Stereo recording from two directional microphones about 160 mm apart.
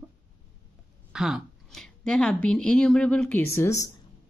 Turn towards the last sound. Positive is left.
turn(degrees=20)  # may be behind; listen again after turning